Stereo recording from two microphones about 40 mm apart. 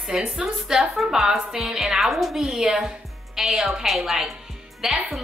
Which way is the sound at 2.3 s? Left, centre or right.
Centre.